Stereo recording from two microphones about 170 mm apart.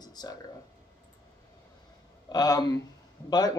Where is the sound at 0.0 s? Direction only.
25° left (ahead or behind).